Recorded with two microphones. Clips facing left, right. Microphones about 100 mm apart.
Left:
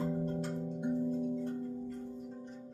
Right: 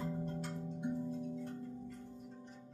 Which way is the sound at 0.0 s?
35° left (ahead or behind).